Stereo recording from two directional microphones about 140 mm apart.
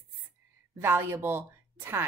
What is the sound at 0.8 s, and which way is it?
Speech, 15° right (ahead or behind).